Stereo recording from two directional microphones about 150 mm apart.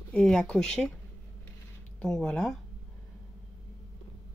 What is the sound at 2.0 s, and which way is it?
Speech, 5° left (ahead or behind).